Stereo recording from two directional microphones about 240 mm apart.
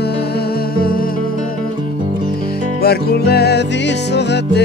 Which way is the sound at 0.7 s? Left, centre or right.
Left.